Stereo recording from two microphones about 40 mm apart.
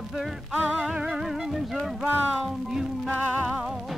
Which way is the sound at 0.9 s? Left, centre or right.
Right.